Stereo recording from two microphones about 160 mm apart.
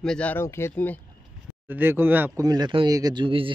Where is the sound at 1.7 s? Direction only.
15° right (ahead or behind); by 3.5 s 35° right (ahead or behind).